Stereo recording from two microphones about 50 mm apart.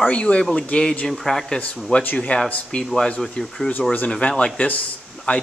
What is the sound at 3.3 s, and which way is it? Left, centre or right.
Speech, centre.